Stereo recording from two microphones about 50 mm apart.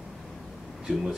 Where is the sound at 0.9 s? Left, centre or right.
Centre.